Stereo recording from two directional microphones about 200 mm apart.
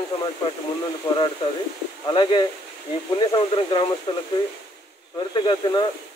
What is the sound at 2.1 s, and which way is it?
Speech, 25° left (ahead or behind).